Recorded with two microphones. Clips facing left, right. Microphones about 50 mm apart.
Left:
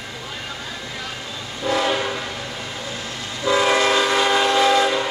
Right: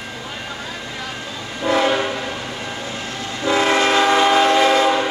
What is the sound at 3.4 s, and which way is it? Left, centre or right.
Train, right.